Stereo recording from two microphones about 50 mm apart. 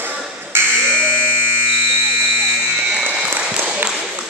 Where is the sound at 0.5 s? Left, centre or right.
Right.